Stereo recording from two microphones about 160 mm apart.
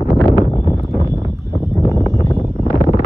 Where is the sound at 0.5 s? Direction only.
30° left (ahead or behind).